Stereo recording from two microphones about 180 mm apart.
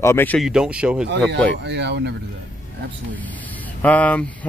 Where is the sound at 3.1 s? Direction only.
10° left (ahead or behind).